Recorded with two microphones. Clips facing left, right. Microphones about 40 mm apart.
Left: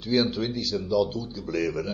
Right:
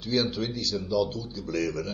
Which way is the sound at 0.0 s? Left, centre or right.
Centre.